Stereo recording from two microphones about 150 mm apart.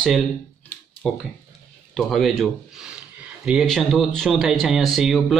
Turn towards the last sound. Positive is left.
turn(degrees=0)  # may be behind; listen again after turning